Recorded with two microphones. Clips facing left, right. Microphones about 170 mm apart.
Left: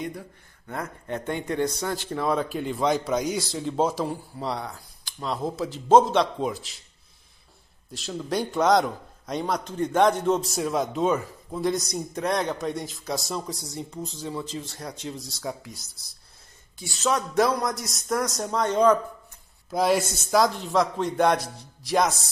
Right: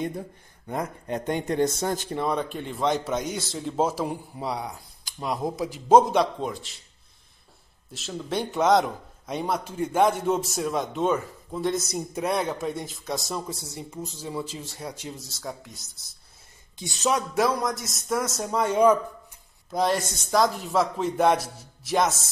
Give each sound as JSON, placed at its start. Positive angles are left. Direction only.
{"t": 0.7, "sound": "speech", "side_deg": -20}
{"t": 1.4, "sound": "a man's voice", "side_deg": -40}
{"t": 2.1, "sound": "a man's voice", "side_deg": 0}
{"t": 6.4, "sound": "a man's voice", "side_deg": 5}
{"t": 7.9, "sound": "a man's voice", "side_deg": 0}
{"t": 16.7, "sound": "speech", "side_deg": -15}
{"t": 17.3, "sound": "a man's voice", "side_deg": 0}
{"t": 19.7, "sound": "a man's voice", "side_deg": 5}